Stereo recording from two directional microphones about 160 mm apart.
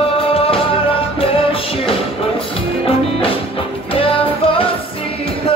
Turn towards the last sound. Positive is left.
turn(degrees=35)  # may be behind; listen again after turning